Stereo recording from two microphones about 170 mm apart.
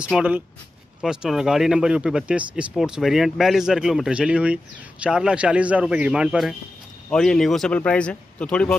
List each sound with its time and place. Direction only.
0.1 s speech: 5° right (ahead or behind)